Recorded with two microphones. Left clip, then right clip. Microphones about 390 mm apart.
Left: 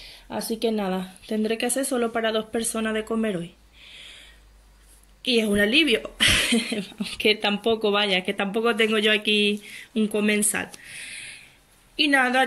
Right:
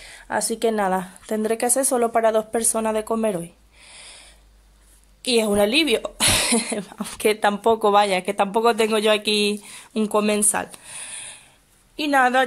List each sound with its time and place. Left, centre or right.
0.4 s speech: centre
1.2 s speech: right
1.6 s speech: centre
5.2 s speech: centre
6.7 s a woman's voice: right
7.0 s speech: centre